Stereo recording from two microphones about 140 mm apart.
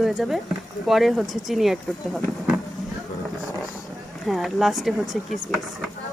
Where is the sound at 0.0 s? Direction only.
Centre (ahead or behind).